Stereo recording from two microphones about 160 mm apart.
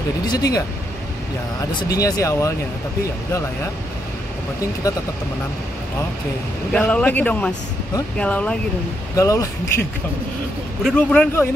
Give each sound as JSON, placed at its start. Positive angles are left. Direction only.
{"t": 0.3, "sound": "speech", "side_deg": 25}
{"t": 1.8, "sound": "speech", "side_deg": 20}
{"t": 6.7, "sound": "speech", "side_deg": 5}
{"t": 9.1, "sound": "speech", "side_deg": 20}
{"t": 10.8, "sound": "speech", "side_deg": 5}